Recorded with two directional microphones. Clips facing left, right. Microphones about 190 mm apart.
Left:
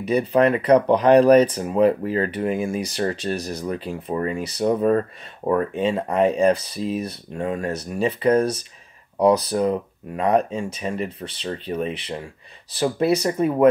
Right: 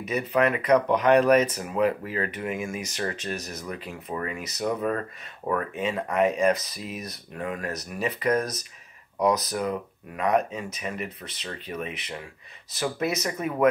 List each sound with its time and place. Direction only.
0.0 s speech: 30° left (ahead or behind)